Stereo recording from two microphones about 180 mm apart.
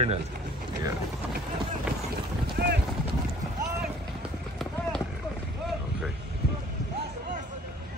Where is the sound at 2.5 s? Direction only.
60° right (ahead or behind).